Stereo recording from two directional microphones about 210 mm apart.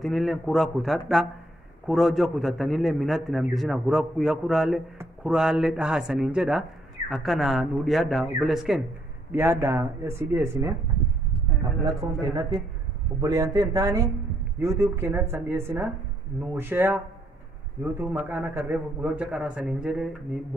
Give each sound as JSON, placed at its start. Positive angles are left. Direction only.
{"t": 0.0, "sound": "a man's voice", "side_deg": 0}
{"t": 11.8, "sound": "a man's voice", "side_deg": -20}